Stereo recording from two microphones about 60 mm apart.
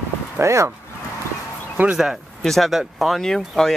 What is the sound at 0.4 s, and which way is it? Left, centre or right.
Speech, right.